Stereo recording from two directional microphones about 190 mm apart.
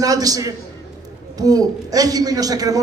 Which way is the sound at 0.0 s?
20° right (ahead or behind).